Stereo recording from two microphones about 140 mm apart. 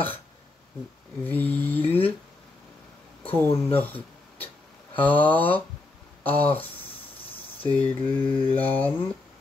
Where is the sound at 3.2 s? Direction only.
15° left (ahead or behind).